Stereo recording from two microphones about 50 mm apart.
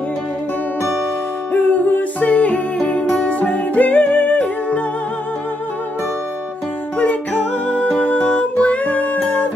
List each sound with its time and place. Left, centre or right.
1.5 s music: left
7.0 s music: left